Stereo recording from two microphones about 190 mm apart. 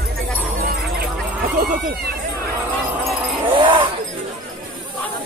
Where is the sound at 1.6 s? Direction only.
50° right (ahead or behind).